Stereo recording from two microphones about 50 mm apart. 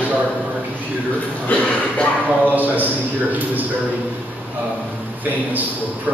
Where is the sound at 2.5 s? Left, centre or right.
Right.